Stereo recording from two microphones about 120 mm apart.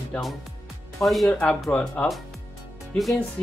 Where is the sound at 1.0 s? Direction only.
Centre (ahead or behind).